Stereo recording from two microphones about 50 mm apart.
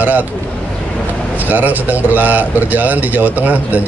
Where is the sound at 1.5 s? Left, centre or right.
Right.